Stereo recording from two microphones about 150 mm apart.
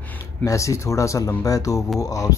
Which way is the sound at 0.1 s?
20° left (ahead or behind).